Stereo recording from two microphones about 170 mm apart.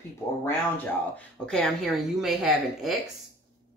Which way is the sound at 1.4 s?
5° left (ahead or behind).